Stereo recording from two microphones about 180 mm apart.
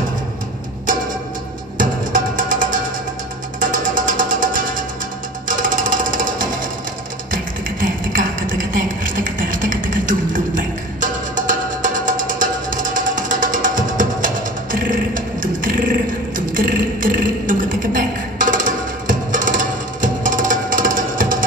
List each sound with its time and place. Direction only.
1.8 s music: 50° right (ahead or behind)
7.8 s music: 50° right (ahead or behind)
16.3 s a sound: 50° right (ahead or behind)